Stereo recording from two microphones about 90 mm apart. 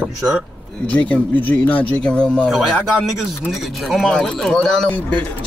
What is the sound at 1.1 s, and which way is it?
Speech, 20° left (ahead or behind).